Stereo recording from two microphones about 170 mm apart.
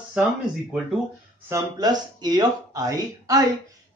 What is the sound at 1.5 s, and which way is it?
Speech, 20° right (ahead or behind).